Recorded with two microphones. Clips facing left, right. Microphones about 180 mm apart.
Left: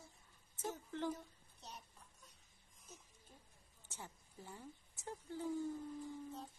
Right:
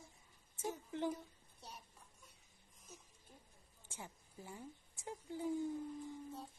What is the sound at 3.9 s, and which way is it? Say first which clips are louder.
A woman's voice: right 1 dB; 10° right (ahead or behind).